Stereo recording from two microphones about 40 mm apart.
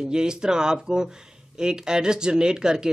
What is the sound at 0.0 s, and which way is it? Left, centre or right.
Speech, centre.